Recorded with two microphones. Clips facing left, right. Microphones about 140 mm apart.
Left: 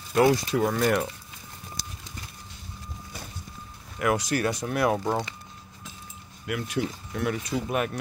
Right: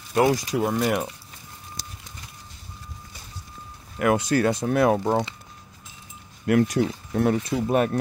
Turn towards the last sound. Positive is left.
turn(degrees=-35)  # may be behind; listen again after turning